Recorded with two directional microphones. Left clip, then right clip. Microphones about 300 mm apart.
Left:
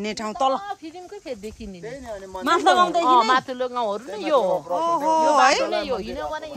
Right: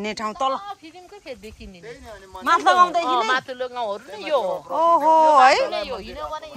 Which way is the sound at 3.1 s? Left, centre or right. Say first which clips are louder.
Left 4 dB; left.